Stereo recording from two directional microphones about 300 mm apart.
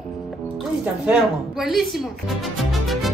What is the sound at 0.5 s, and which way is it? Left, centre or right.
A woman's voice, centre.